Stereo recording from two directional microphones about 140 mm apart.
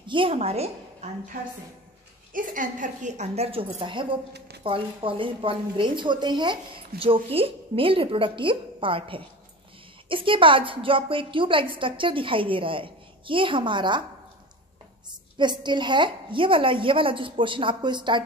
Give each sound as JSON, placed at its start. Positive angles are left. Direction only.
{"t": 0.0, "sound": "a woman's voice", "side_deg": -35}
{"t": 2.3, "sound": "a woman's voice", "side_deg": -70}
{"t": 15.0, "sound": "a woman's voice", "side_deg": -30}